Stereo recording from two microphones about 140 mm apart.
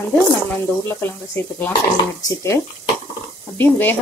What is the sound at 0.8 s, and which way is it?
Speech, 15° left (ahead or behind).